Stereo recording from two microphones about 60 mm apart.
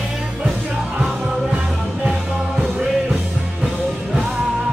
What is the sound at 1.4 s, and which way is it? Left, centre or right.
Music, centre.